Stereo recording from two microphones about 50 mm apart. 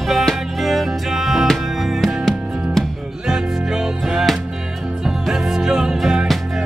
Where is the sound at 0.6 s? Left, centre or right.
Centre.